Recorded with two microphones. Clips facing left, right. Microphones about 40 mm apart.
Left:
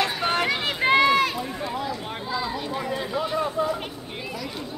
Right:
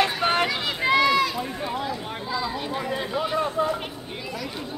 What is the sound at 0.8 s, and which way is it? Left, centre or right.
Run, left.